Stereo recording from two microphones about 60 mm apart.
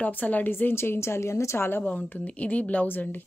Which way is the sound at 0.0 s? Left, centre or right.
Left.